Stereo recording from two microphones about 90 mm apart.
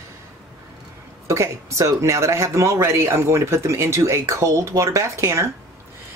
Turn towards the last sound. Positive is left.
turn(degrees=-35)  # may be behind; listen again after turning